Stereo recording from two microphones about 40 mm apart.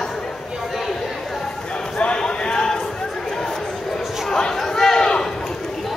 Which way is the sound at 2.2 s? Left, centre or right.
Centre.